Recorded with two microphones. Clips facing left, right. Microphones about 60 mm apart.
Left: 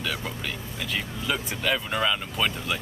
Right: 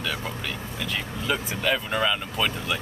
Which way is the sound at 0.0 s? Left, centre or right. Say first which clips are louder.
Right 1 dB; centre.